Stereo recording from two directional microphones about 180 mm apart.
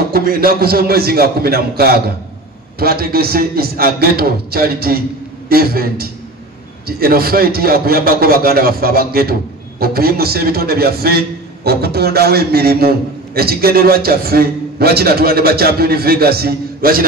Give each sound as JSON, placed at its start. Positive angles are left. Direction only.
{"t": 0.1, "sound": "a man's voice", "side_deg": -55}